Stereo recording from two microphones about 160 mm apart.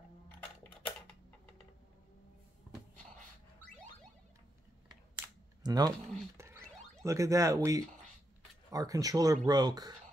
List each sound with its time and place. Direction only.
5.6 s speech: 25° right (ahead or behind)
7.0 s speech: 20° right (ahead or behind)